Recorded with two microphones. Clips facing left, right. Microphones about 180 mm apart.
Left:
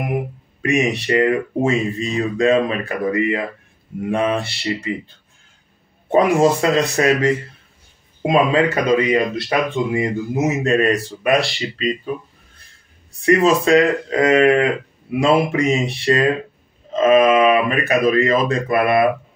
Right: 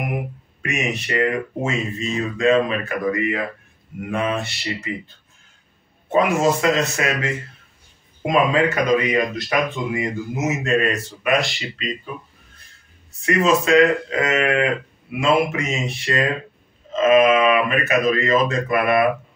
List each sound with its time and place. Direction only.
0.6 s speech: 35° left (ahead or behind)
6.0 s speech: 35° left (ahead or behind)
8.9 s speech: 30° left (ahead or behind)
13.2 s speech: 35° left (ahead or behind)